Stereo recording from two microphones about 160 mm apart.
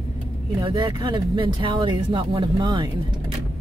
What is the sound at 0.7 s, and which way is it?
Speech, 25° right (ahead or behind).